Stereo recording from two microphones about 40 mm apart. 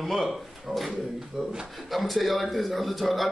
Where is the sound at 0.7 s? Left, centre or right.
Centre.